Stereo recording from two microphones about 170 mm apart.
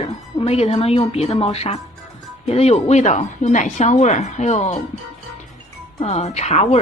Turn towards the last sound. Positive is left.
turn(degrees=40)  # may be behind; listen again after turning